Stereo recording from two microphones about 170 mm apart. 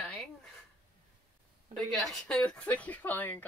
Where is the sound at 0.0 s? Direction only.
Centre (ahead or behind).